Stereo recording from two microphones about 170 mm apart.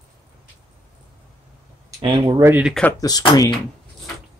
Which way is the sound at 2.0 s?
30° right (ahead or behind).